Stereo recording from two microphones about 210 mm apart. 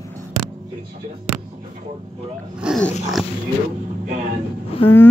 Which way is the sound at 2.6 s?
Centre (ahead or behind).